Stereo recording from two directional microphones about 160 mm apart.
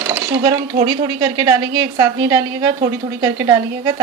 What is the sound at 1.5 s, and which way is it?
Speech, 20° right (ahead or behind).